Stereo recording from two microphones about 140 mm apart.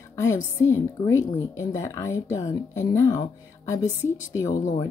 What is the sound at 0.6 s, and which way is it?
Speech, 20° left (ahead or behind).